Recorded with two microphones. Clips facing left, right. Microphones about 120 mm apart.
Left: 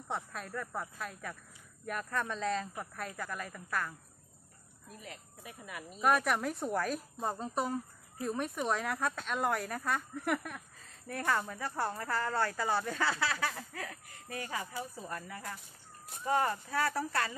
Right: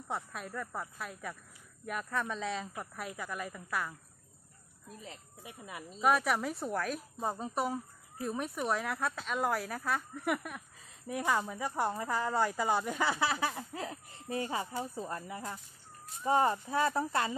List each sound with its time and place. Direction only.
0.1 s speech: 5° right (ahead or behind)
5.0 s speech: 25° right (ahead or behind)
6.0 s speech: centre (ahead or behind); by 17.4 s 20° right (ahead or behind)